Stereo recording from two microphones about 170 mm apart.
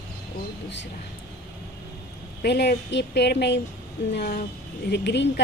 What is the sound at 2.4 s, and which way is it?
Speech, 80° left.